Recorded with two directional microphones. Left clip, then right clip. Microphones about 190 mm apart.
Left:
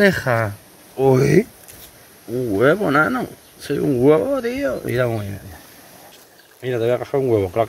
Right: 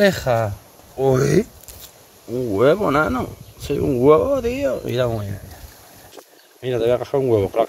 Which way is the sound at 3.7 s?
10° right (ahead or behind).